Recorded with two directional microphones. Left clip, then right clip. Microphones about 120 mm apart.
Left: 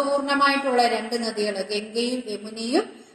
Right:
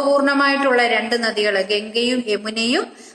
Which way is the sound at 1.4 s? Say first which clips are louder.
Right 8 dB; 50° right (ahead or behind).